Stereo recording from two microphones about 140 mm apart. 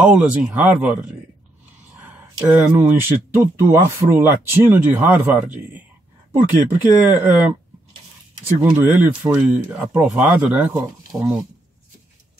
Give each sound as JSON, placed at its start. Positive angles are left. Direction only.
{"t": 0.0, "sound": "speech", "side_deg": -10}
{"t": 2.4, "sound": "speech", "side_deg": -15}
{"t": 8.6, "sound": "speech", "side_deg": -15}